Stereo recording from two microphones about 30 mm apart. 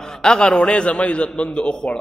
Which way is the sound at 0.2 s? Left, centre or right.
Left.